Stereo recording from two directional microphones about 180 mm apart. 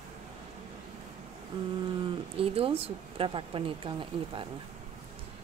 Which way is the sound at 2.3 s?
30° right (ahead or behind).